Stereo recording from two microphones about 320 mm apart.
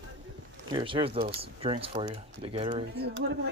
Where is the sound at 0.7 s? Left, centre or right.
Centre.